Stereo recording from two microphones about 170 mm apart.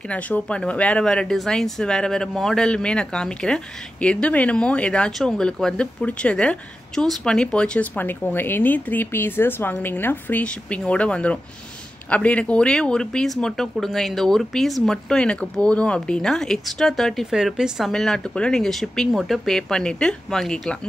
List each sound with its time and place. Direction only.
0.1 s speech: 5° left (ahead or behind)